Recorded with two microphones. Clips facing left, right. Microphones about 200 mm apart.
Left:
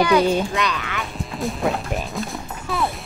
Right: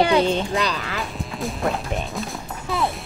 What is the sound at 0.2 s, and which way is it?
Speech, 10° left (ahead or behind).